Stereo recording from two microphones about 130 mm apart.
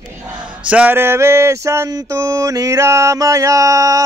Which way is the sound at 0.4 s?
10° right (ahead or behind).